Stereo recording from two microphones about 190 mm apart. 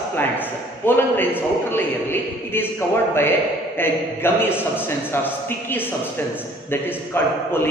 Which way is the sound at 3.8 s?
10° left (ahead or behind).